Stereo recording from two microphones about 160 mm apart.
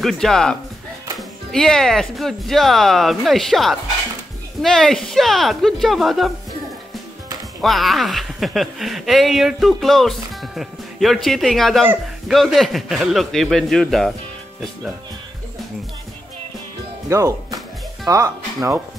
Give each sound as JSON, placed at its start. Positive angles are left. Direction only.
{"t": 0.0, "sound": "speech", "side_deg": 5}
{"t": 7.6, "sound": "speech", "side_deg": 0}
{"t": 17.1, "sound": "speech", "side_deg": -20}